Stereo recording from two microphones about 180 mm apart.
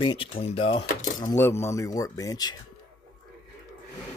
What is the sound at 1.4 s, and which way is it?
Speech, 15° left (ahead or behind).